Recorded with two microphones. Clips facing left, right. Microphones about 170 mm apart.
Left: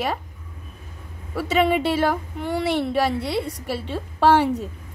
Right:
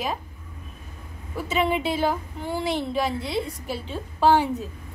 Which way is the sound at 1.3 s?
75° left (ahead or behind).